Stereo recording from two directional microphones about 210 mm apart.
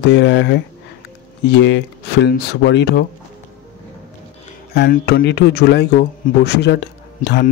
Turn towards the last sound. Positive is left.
turn(degrees=55)  # may be behind; listen again after turning